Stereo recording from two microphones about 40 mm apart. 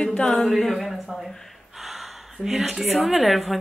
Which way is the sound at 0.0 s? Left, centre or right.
Left.